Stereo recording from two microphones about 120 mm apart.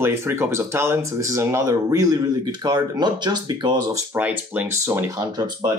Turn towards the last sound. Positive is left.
turn(degrees=-35)  # may be behind; listen again after turning